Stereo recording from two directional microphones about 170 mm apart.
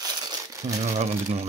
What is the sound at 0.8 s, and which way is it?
Speech, 40° right (ahead or behind).